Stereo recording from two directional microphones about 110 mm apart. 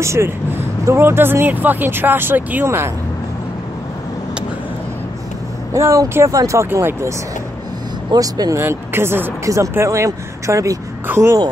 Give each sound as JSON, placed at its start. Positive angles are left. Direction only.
{"t": 0.0, "sound": "speech", "side_deg": -25}
{"t": 5.8, "sound": "speech", "side_deg": -30}
{"t": 8.1, "sound": "speech", "side_deg": -35}
{"t": 8.6, "sound": "speech", "side_deg": -20}